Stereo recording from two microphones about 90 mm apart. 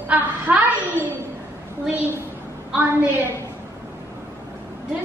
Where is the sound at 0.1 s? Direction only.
20° right (ahead or behind).